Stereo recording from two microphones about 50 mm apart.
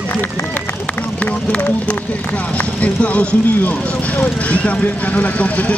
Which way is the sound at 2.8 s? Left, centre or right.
Left.